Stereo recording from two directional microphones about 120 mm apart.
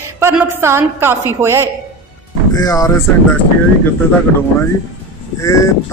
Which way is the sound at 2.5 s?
30° left (ahead or behind).